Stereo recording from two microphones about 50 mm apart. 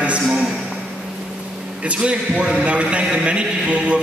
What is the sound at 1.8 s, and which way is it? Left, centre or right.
A man's voice, right.